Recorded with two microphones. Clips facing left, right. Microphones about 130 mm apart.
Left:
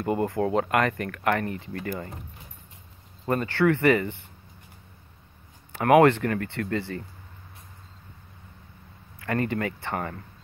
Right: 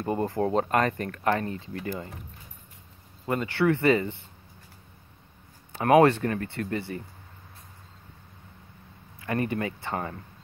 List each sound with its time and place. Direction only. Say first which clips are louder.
0.2 s speech: left 1 dB; 25° right (ahead or behind)
3.4 s speech: left 1 dB; 15° right (ahead or behind)
5.7 s speech: left 1 dB; 20° right (ahead or behind)
9.2 s speech: left 1 dB; 20° right (ahead or behind)